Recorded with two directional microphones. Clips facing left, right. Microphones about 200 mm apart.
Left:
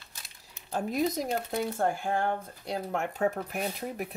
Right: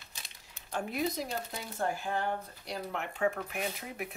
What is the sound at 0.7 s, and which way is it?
Speech, 35° left (ahead or behind).